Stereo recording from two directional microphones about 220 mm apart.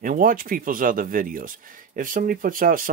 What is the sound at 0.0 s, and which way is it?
Speech, 40° right (ahead or behind).